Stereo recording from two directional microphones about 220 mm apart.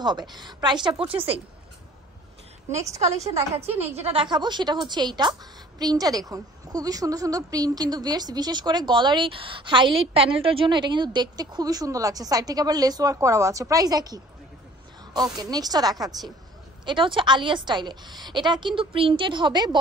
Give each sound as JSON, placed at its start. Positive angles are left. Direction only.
{"t": 0.0, "sound": "a woman's voice", "side_deg": -20}
{"t": 3.1, "sound": "a woman's voice", "side_deg": -30}
{"t": 3.7, "sound": "a woman's voice", "side_deg": -10}
{"t": 4.0, "sound": "a woman's voice", "side_deg": -25}